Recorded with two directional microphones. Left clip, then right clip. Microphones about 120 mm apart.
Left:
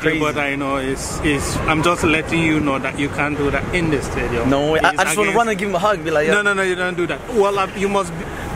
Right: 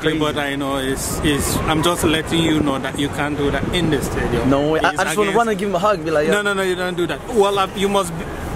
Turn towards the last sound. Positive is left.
turn(degrees=-15)  # may be behind; listen again after turning